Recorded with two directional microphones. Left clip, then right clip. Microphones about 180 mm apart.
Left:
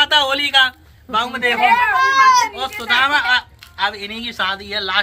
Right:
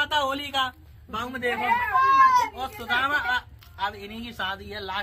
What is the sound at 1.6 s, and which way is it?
Speech, 20° right (ahead or behind).